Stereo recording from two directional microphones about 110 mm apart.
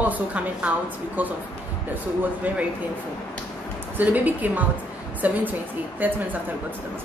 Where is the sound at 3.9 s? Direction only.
15° right (ahead or behind).